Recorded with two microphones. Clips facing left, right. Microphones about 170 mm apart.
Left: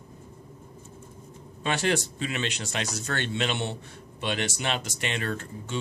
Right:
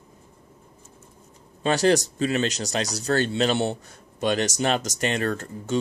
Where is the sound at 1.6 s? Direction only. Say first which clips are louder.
Right 7 dB; 35° right (ahead or behind).